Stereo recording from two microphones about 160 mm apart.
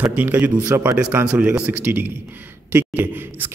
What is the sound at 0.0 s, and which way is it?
A man's voice, 10° right (ahead or behind).